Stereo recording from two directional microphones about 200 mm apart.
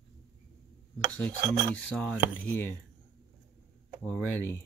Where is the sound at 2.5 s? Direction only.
10° left (ahead or behind).